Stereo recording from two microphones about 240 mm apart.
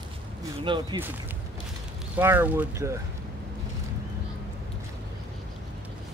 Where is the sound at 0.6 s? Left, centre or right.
Centre.